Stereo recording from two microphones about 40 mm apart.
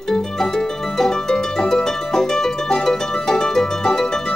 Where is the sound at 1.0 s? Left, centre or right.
Centre.